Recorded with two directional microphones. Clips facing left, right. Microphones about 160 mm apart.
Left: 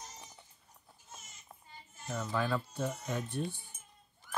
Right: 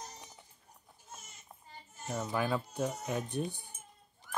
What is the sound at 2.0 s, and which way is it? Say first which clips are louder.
Speech: right 1 dB; 20° right (ahead or behind).